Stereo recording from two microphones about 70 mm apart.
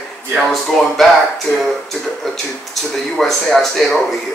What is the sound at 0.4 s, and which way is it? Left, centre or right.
Speech, centre.